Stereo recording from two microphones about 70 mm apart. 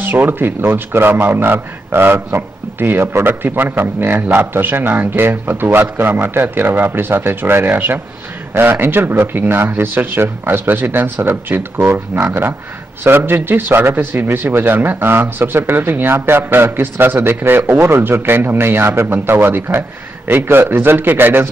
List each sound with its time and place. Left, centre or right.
0.0 s a man's voice: right